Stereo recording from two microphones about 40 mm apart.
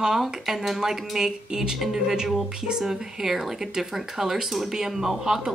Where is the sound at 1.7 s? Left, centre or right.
Centre.